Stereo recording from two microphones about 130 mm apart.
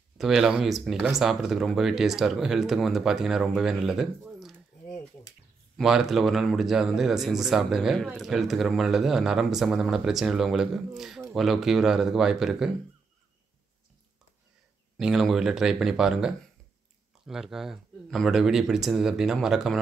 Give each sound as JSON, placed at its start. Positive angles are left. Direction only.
{"t": 0.2, "sound": "speech", "side_deg": 0}
{"t": 5.8, "sound": "speech", "side_deg": 0}
{"t": 15.0, "sound": "speech", "side_deg": -5}